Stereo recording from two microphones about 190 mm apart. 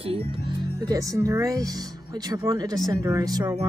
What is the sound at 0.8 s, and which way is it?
Speech, 15° right (ahead or behind).